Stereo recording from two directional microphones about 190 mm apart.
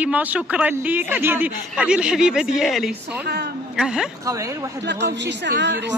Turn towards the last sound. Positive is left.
turn(degrees=-65)  # may be behind; listen again after turning